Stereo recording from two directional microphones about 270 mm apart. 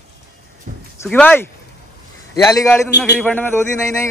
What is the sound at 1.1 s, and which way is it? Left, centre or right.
A man's voice, centre.